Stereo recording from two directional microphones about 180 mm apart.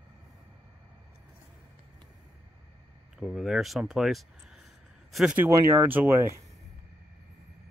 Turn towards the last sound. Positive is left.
turn(degrees=-10)  # may be behind; listen again after turning